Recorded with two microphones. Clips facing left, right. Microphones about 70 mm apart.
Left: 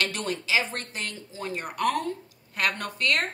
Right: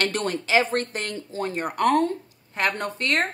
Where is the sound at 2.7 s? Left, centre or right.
Right.